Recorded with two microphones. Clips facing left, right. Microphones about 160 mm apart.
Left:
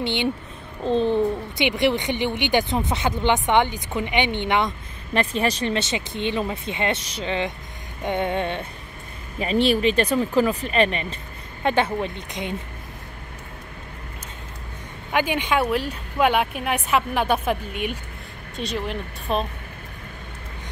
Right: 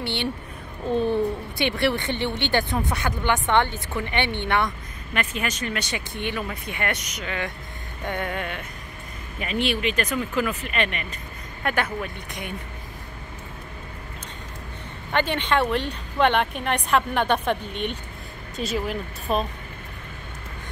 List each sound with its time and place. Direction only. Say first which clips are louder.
0.0 s speech: left 4 dB; 15° left (ahead or behind)
5.1 s speech: left 6 dB; 35° left (ahead or behind)
15.1 s speech: left 1 dB; 10° left (ahead or behind)